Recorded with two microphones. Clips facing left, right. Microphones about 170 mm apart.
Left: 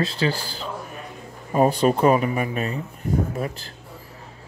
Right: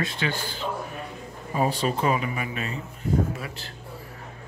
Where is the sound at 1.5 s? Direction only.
50° left (ahead or behind).